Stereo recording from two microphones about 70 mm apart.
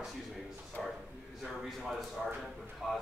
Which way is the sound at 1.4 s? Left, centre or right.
Centre.